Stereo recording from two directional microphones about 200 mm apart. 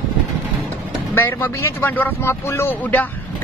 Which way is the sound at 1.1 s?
10° left (ahead or behind).